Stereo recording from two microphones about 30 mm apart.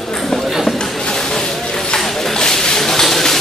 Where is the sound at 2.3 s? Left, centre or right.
Left.